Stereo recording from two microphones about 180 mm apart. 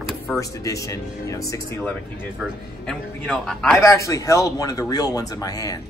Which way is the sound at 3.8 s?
15° left (ahead or behind).